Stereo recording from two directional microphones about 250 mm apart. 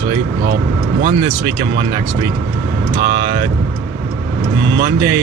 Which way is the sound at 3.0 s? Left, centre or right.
Right.